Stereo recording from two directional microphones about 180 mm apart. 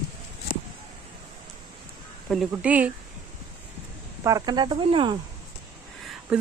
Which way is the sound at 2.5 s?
10° right (ahead or behind).